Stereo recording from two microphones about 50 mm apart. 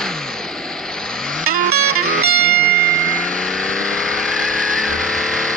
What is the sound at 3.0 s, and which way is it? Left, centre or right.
Vehicle, left.